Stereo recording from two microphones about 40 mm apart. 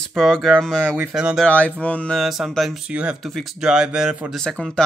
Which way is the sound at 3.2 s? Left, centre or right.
Centre.